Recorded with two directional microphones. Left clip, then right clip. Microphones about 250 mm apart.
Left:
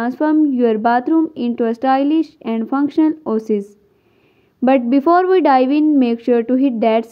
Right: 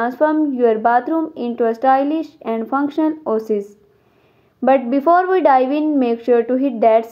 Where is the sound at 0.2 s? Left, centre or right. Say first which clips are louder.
Left 1 dB; left.